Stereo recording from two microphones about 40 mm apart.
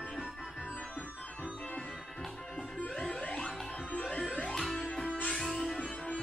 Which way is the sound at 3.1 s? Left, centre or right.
Left.